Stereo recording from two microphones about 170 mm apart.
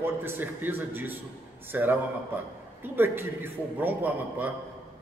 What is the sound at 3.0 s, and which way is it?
A man's voice, 10° right (ahead or behind).